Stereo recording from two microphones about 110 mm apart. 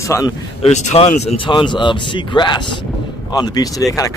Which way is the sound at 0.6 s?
80° left.